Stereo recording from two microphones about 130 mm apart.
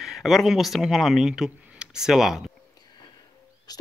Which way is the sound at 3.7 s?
30° left (ahead or behind).